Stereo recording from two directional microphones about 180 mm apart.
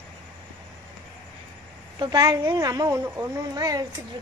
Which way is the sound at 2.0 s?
20° right (ahead or behind).